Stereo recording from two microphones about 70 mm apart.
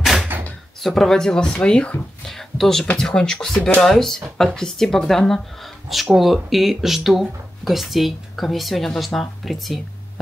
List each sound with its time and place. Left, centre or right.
0.3 s door: right
0.7 s speech: centre
2.2 s speech: centre